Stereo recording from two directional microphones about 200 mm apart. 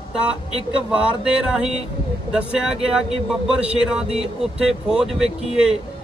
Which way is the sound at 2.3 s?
5° right (ahead or behind).